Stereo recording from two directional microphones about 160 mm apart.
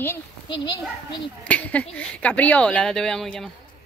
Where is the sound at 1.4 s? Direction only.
10° left (ahead or behind).